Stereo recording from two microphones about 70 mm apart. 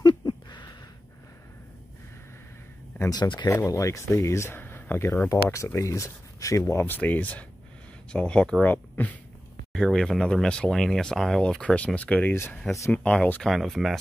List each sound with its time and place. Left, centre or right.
0.2 s a sound: left
3.1 s speech: left
3.5 s speech: left
4.6 s a sound: left
5.3 s speech: left
6.6 s speech: left; by 8.6 s centre
8.6 s speech: left
9.8 s speech: centre
13.5 s speech: centre